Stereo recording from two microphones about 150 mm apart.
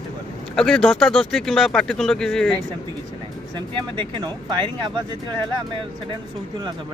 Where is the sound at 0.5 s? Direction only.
5° left (ahead or behind).